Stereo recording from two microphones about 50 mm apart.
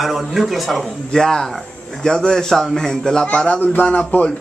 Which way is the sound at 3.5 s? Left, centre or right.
Left.